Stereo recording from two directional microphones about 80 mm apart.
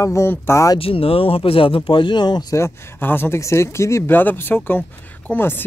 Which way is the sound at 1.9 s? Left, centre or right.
Left.